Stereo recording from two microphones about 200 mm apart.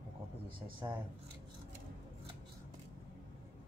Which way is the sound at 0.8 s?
15° right (ahead or behind).